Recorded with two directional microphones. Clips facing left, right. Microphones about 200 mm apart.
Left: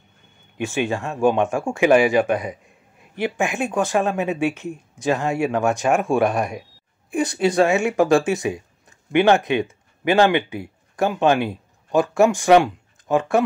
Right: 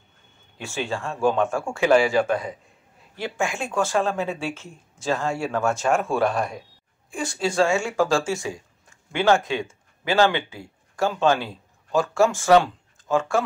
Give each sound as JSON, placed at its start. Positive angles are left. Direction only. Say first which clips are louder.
{"t": 0.6, "sound": "speech", "louder": "left 6 dB", "side_deg": 20}